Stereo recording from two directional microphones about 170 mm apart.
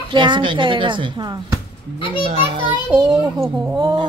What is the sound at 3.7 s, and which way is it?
Speech, 30° right (ahead or behind).